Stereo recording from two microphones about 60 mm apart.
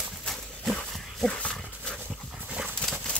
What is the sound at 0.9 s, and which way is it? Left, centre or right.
Dog, centre.